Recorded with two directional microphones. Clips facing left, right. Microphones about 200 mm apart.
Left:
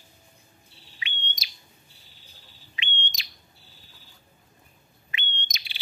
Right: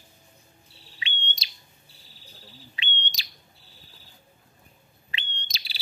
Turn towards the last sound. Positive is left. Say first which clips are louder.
# left 2 dB
turn(degrees=-35)  # may be behind; listen again after turning